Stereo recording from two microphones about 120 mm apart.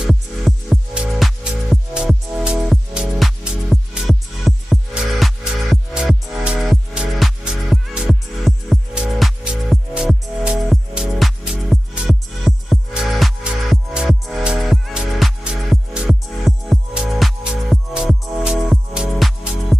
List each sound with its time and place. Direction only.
0.0 s music: 5° right (ahead or behind)